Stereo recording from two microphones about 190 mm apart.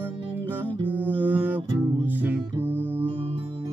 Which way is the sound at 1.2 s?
10° right (ahead or behind).